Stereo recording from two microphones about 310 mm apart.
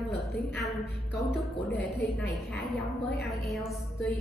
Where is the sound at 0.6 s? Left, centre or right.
Centre.